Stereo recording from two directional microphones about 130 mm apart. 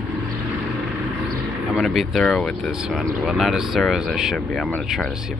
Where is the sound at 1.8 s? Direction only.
Centre (ahead or behind).